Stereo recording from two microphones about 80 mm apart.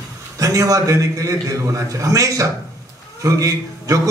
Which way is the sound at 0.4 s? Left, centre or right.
Right.